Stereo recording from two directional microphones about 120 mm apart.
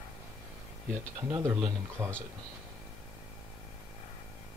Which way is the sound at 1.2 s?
25° right (ahead or behind).